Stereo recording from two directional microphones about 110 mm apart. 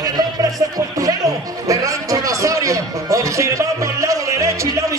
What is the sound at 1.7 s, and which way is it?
Music, 30° right (ahead or behind).